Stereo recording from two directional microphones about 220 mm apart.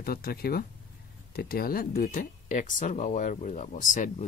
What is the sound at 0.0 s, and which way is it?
Speech, 45° left (ahead or behind).